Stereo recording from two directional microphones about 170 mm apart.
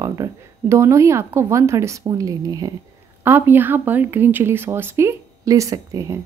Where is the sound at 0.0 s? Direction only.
20° right (ahead or behind).